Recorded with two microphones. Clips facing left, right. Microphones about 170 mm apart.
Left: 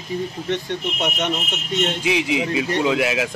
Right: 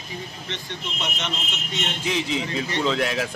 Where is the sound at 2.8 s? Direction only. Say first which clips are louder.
Left 2 dB; 10° left (ahead or behind).